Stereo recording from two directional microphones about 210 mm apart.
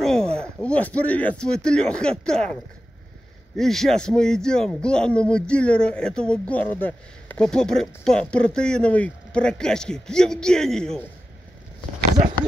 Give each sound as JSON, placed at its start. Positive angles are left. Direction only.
{"t": 0.0, "sound": "speech", "side_deg": 5}
{"t": 3.5, "sound": "speech", "side_deg": 0}